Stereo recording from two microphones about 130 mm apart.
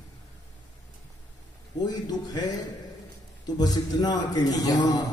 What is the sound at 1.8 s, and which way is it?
Speech, 30° left (ahead or behind).